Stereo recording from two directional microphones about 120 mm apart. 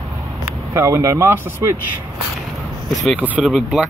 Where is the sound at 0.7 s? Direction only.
25° right (ahead or behind).